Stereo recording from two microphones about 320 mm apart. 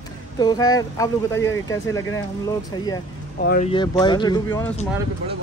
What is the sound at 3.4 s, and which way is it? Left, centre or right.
Speech, left.